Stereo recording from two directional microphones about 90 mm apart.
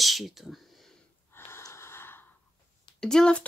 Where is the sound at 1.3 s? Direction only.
25° left (ahead or behind).